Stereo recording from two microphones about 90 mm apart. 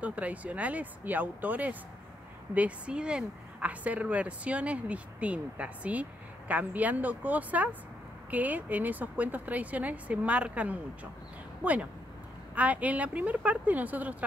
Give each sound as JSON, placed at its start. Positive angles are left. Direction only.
{"t": 0.0, "sound": "a woman's voice", "side_deg": -15}